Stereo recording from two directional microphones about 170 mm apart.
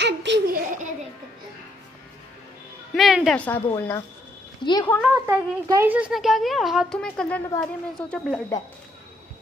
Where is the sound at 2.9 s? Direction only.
Centre (ahead or behind).